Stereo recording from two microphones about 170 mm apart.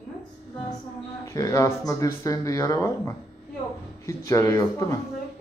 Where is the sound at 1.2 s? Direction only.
20° left (ahead or behind).